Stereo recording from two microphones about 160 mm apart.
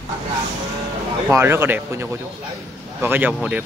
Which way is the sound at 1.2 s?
15° right (ahead or behind).